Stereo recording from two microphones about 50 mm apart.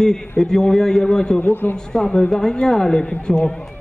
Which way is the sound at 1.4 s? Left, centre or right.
Left.